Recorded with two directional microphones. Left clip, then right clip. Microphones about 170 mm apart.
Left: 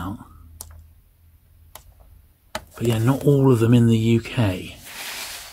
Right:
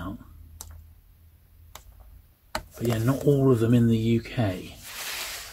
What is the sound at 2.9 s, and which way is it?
Speech, 40° left (ahead or behind).